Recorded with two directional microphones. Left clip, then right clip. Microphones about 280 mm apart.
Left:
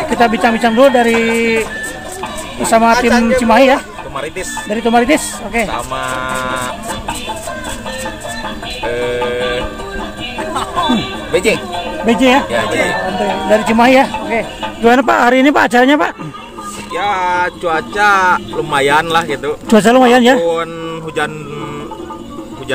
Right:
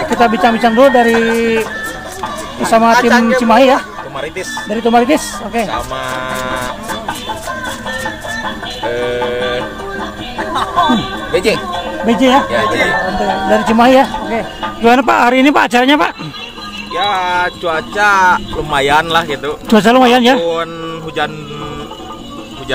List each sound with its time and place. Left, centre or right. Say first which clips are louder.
0.2 s speech: right 1 dB; centre
3.0 s speech: right 2 dB; centre
3.3 s speech: left 1 dB; centre
5.7 s speech: even; centre
6.9 s music: right 1 dB; left
8.8 s music: even; centre
10.8 s music: right 3 dB; left
11.3 s speech: even; centre
12.1 s speech: even; centre
12.8 s speech: right 2 dB; left
13.7 s speech: right 2 dB; centre